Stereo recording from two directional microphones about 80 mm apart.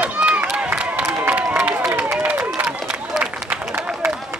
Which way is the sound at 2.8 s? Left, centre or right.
Centre.